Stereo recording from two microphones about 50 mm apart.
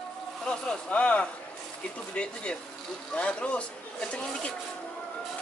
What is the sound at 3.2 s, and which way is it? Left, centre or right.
Speech, left.